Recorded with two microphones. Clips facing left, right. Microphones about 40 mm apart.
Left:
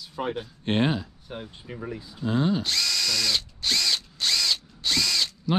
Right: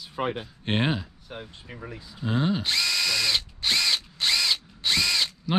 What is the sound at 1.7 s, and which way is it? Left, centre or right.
Drill, centre.